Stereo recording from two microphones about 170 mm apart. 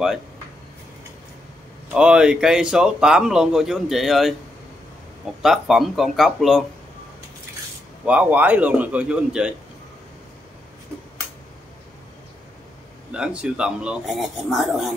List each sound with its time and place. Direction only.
1.9 s speech: 5° right (ahead or behind)
8.0 s a man's voice: 10° right (ahead or behind)
13.1 s speech: 5° right (ahead or behind)